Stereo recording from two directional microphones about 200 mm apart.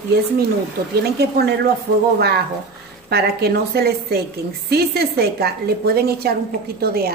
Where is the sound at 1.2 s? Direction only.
55° right (ahead or behind).